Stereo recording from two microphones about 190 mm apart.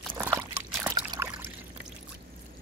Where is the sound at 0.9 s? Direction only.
20° right (ahead or behind).